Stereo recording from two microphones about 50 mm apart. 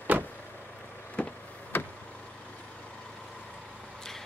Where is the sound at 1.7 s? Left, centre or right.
Left.